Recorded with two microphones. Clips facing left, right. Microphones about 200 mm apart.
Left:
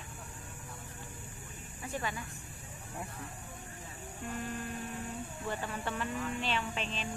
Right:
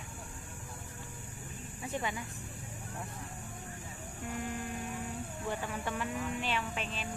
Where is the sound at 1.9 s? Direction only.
20° right (ahead or behind).